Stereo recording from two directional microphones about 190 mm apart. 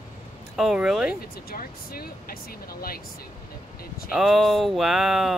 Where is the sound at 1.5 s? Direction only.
50° left (ahead or behind).